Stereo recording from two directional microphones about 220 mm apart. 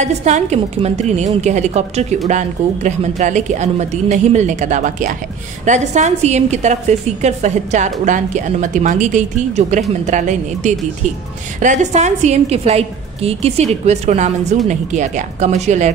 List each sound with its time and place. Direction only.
0.0 s a woman's voice: 30° right (ahead or behind)